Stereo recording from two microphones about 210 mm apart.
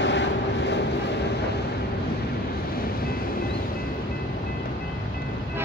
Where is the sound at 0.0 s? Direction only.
60° left (ahead or behind).